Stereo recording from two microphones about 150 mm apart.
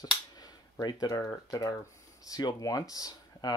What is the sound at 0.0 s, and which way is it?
Speech, 25° left (ahead or behind).